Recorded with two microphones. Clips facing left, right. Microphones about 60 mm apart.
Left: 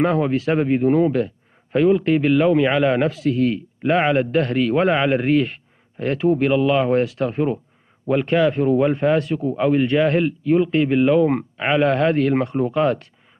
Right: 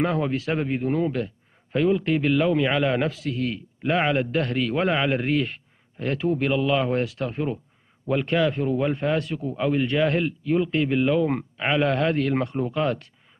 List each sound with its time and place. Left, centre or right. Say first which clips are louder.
0.0 s a man's voice: left 5 dB; left